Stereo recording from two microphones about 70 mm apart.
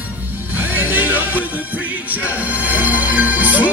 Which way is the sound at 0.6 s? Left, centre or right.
Right.